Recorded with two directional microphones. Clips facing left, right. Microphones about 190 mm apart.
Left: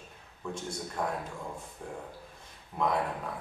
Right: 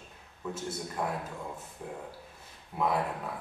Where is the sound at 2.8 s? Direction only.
5° right (ahead or behind).